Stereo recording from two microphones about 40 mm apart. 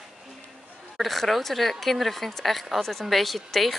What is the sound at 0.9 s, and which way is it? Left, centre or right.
A woman's voice, centre.